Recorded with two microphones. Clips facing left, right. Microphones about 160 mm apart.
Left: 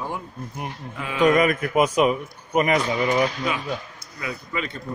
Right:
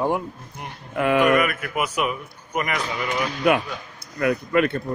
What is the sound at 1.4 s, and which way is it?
A man's voice, 30° left (ahead or behind).